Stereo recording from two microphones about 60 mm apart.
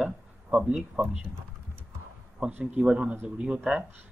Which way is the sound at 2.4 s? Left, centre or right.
Centre.